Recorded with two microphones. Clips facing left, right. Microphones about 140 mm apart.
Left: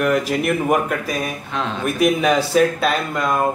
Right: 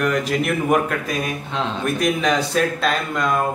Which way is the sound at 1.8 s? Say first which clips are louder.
Left 4 dB; 5° left (ahead or behind).